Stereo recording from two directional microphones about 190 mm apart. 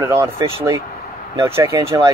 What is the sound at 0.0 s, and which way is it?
Speech, 15° right (ahead or behind).